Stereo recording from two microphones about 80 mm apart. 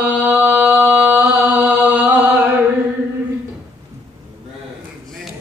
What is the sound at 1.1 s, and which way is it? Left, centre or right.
Chant, right.